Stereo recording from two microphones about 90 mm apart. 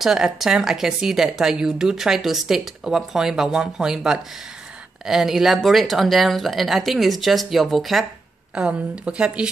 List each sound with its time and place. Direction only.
0.0 s speech: 5° right (ahead or behind)
8.5 s a woman's voice: 10° right (ahead or behind)